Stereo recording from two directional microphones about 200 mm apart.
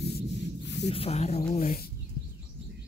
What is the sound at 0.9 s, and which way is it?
Speech, 30° left (ahead or behind).